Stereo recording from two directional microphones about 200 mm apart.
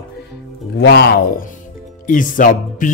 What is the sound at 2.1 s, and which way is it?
Music, 40° left (ahead or behind).